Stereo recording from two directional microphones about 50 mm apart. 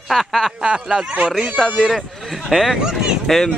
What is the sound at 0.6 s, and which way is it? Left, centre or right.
Speech, right.